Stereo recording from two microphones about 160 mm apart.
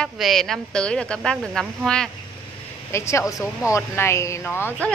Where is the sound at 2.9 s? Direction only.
15° left (ahead or behind).